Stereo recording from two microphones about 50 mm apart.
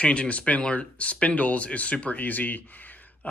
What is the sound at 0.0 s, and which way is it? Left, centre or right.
Speech, left.